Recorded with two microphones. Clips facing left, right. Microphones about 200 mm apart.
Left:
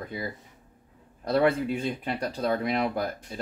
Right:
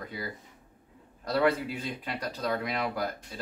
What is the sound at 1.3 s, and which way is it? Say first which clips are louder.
Speech: left 3 dB; 25° left (ahead or behind).